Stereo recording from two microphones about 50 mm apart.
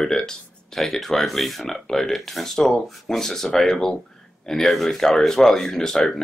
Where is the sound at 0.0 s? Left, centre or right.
Centre.